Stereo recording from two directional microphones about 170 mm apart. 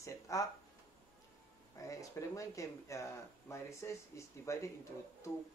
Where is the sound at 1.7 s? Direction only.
20° left (ahead or behind).